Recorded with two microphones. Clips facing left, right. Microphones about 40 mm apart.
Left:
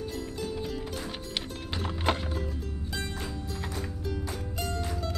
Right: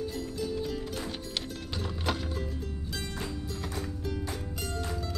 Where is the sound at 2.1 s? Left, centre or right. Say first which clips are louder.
Left 4 dB; left.